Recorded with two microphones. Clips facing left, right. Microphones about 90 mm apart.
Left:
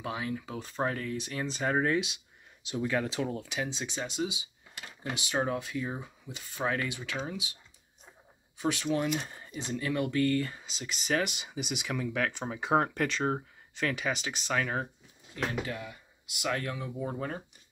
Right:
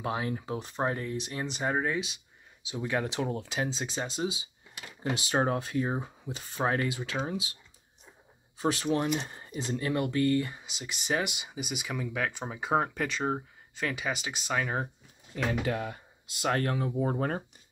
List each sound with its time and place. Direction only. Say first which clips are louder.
0.0 s speech: right 3 dB; 40° right (ahead or behind)
0.6 s speech: even; 20° right (ahead or behind)
1.8 s speech: left 2 dB; 5° right (ahead or behind)
2.8 s speech: even; 20° right (ahead or behind)
8.5 s speech: right 2 dB; 30° right (ahead or behind); by 14.9 s 15° right (ahead or behind)
15.6 s speech: right 6 dB; 65° right (ahead or behind)
16.3 s speech: right 4 dB; 40° right (ahead or behind)